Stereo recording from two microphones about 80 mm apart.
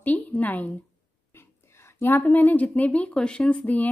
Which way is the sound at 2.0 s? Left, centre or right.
Left.